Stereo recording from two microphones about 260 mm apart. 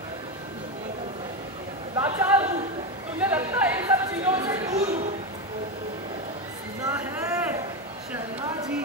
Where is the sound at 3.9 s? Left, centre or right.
Centre.